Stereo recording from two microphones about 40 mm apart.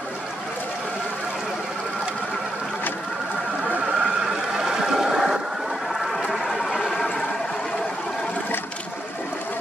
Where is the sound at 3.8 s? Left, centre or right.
Right; by 7.2 s centre.